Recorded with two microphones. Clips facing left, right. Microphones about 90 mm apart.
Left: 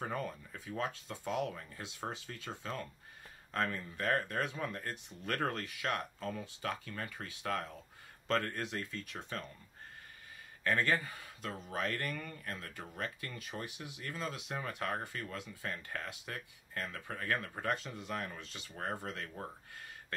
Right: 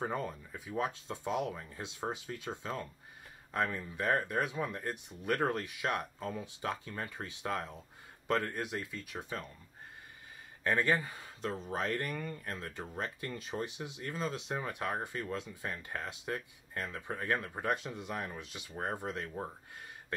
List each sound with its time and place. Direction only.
0.0 s speech: 25° right (ahead or behind)
10.6 s speech: 20° right (ahead or behind)